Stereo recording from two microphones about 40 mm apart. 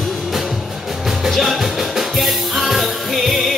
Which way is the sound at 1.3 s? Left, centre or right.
Centre.